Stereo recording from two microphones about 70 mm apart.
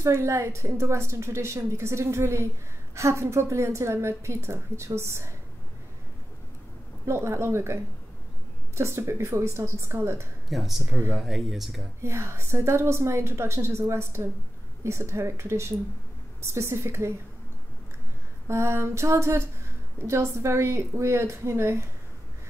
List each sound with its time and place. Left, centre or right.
0.0 s a woman's voice: right
7.1 s a woman's voice: right
10.5 s speech: centre
12.0 s a woman's voice: right
18.5 s a sound: right
20.1 s a woman's voice: right